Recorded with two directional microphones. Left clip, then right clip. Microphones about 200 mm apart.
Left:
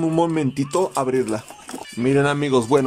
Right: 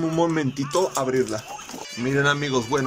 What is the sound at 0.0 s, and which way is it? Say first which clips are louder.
Speech: left 2 dB; 10° left (ahead or behind).